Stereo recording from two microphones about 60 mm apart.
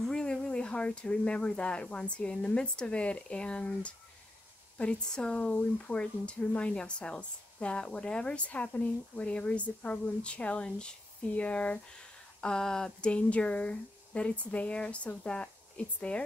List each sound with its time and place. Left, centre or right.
0.0 s speech: centre
13.1 s speech: left